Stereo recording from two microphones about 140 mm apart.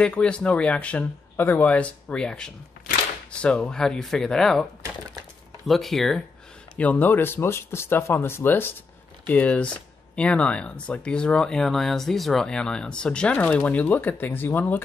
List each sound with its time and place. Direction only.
0.0 s speech: 5° left (ahead or behind)
5.7 s speech: centre (ahead or behind)